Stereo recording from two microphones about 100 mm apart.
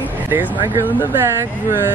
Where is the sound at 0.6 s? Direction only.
20° right (ahead or behind).